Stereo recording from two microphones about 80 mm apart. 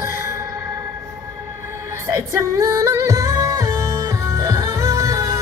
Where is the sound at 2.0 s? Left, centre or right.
Right.